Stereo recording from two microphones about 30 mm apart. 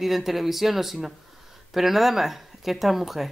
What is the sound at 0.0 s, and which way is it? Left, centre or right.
Speech, centre.